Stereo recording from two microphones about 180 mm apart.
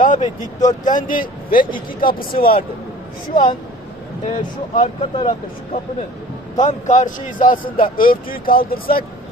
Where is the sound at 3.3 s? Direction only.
45° left (ahead or behind).